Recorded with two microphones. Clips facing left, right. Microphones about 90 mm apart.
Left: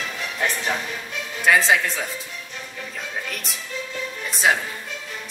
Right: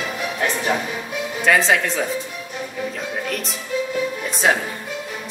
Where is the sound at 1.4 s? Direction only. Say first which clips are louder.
Right 1 dB; 5° left (ahead or behind).